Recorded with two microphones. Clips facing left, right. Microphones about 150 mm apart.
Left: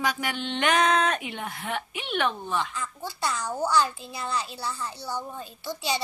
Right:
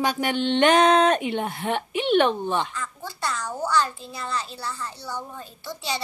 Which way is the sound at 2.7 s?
10° left (ahead or behind).